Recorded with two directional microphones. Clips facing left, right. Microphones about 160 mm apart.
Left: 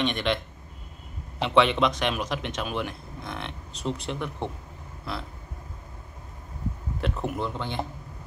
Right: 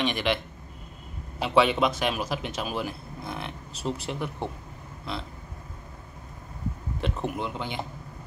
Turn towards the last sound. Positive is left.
turn(degrees=-10)  # may be behind; listen again after turning